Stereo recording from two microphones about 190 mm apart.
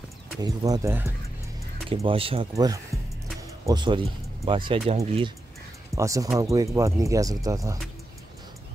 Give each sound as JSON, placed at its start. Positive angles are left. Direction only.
{"t": 0.4, "sound": "speech", "side_deg": -15}
{"t": 2.0, "sound": "speech", "side_deg": -30}
{"t": 2.5, "sound": "speech", "side_deg": -20}
{"t": 5.9, "sound": "speech", "side_deg": -15}